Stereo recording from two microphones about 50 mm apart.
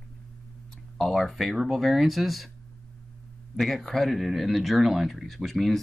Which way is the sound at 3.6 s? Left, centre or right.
Centre.